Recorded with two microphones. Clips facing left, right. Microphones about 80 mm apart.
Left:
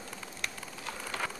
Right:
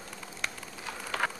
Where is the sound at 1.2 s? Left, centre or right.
Right.